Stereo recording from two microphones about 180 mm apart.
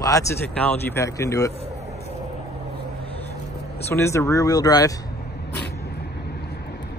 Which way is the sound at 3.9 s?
15° left (ahead or behind).